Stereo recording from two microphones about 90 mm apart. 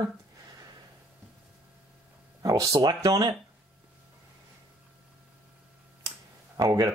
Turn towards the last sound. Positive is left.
turn(degrees=-45)  # may be behind; listen again after turning